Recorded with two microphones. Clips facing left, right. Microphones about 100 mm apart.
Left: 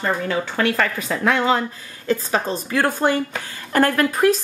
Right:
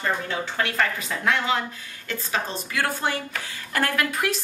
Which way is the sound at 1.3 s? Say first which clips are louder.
Left 5 dB; 35° left (ahead or behind).